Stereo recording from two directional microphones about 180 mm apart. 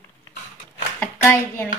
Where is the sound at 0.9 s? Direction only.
10° left (ahead or behind).